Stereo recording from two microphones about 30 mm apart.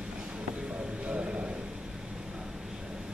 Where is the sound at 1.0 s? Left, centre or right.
Right.